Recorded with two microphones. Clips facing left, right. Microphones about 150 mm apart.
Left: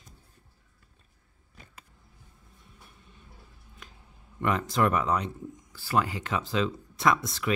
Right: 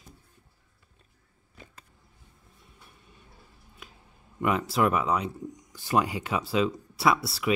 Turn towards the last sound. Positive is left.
turn(degrees=-10)  # may be behind; listen again after turning